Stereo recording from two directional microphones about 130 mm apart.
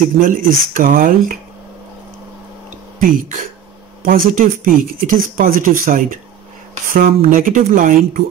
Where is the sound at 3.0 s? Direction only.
90° right.